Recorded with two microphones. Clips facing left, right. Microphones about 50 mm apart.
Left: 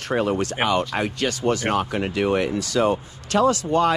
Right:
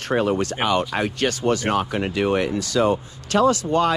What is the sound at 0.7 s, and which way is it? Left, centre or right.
Speech, right.